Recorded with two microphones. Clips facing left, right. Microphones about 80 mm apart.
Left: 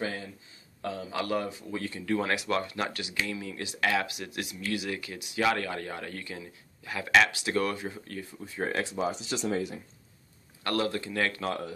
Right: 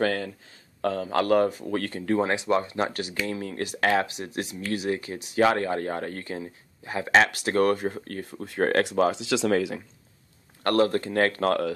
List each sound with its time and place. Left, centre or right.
0.0 s speech: right
0.8 s speech: right
2.1 s speech: right
2.9 s speech: right
7.2 s speech: right
10.6 s speech: right